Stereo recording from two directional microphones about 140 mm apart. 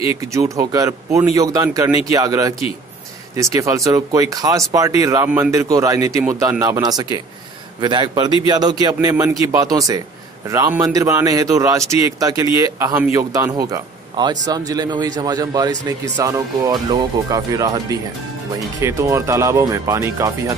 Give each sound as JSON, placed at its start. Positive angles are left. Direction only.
{"t": 0.1, "sound": "a man's voice", "side_deg": -20}